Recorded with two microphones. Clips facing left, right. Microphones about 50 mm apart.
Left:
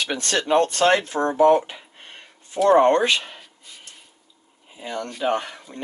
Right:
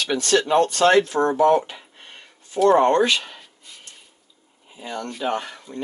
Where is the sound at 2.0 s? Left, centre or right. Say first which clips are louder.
Left 1 dB; centre.